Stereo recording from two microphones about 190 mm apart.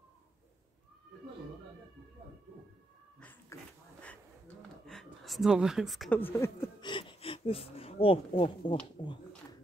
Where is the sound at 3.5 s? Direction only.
15° left (ahead or behind).